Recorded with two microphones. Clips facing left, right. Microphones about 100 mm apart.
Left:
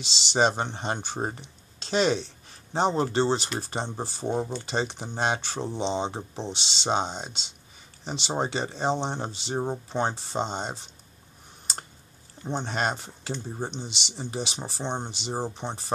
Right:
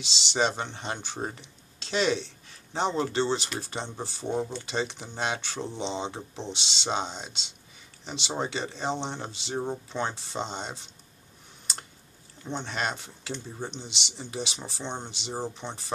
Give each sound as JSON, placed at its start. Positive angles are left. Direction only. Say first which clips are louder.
{"t": 0.0, "sound": "speech", "louder": "left 3 dB", "side_deg": 45}
{"t": 4.3, "sound": "speech", "louder": "left 1 dB", "side_deg": 15}
{"t": 4.6, "sound": "speech", "louder": "left 2 dB", "side_deg": 40}
{"t": 12.4, "sound": "speech", "louder": "left 3 dB", "side_deg": 40}